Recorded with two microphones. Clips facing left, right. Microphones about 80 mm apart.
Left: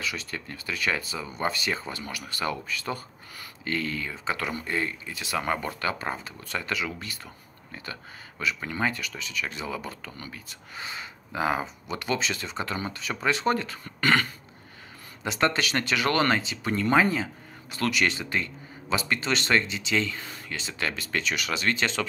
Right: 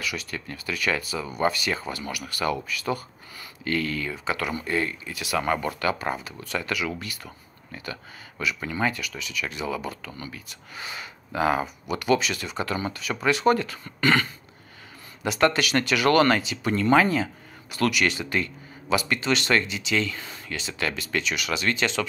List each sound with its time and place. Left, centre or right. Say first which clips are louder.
0.0 s speech: right 1 dB; left
15.2 s speech: right 3 dB; left